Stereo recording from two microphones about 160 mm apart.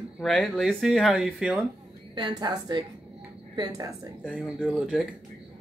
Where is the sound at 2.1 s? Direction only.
25° right (ahead or behind).